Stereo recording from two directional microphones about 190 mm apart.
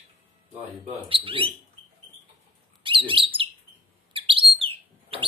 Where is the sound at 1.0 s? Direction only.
30° right (ahead or behind).